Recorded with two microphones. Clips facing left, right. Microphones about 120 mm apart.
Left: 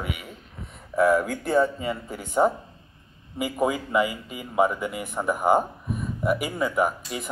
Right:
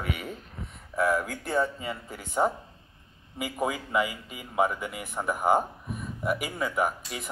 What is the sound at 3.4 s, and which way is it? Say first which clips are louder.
Speech: left 5 dB; 30° left (ahead or behind).